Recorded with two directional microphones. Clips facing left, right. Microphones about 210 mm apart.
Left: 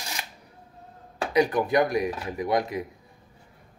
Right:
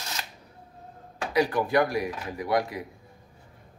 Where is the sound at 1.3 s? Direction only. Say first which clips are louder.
Left 2 dB; 20° left (ahead or behind).